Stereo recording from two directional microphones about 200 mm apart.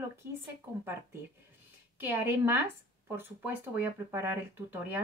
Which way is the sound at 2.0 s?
10° right (ahead or behind).